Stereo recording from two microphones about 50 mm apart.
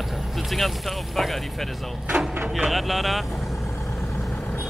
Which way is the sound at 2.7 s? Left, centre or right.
Centre.